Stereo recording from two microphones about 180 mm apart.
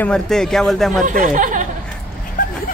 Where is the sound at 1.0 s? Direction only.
45° right (ahead or behind).